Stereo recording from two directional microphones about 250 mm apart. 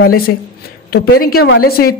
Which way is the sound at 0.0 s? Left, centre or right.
Left.